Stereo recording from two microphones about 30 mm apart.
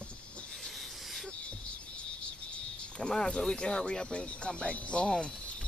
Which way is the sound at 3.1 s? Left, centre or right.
Left.